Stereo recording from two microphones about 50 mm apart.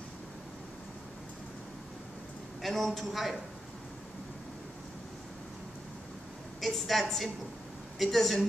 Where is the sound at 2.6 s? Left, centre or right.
Centre.